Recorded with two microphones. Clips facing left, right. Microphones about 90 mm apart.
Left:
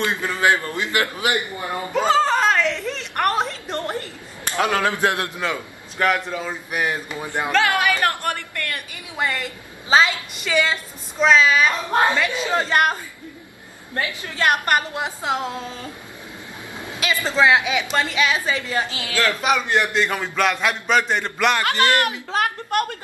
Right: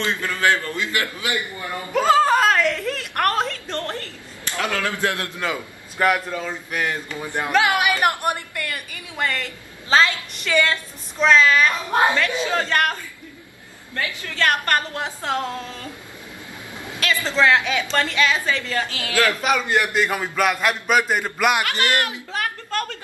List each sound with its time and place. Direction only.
0.0 s a man's voice: 20° left (ahead or behind)
2.0 s a woman's voice: 5° right (ahead or behind); by 5.4 s 20° left (ahead or behind)
5.4 s a man's voice: 5° right (ahead or behind)
6.3 s a woman's voice: 10° left (ahead or behind)
7.5 s a man's voice: 15° right (ahead or behind)
8.9 s a woman's voice: 10° left (ahead or behind)
16.9 s a woman's voice: 15° left (ahead or behind)
19.4 s a man's voice: centre (ahead or behind)
22.7 s a man's voice: 20° left (ahead or behind)